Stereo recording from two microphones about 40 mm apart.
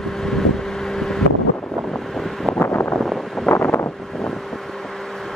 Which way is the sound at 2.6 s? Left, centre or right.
Left.